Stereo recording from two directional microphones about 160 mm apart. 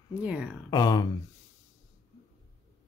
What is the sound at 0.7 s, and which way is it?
Speech, 25° left (ahead or behind).